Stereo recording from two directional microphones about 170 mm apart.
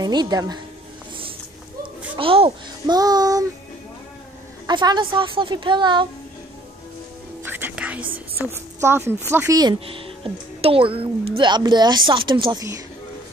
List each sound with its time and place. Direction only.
0.0 s a woman's voice: 25° right (ahead or behind)
1.8 s a child's voice: 30° right (ahead or behind)
3.0 s a woman's voice: 20° right (ahead or behind)
4.6 s a woman's voice: 25° right (ahead or behind)
7.4 s music: 10° right (ahead or behind)
8.5 s a woman's voice: 15° right (ahead or behind)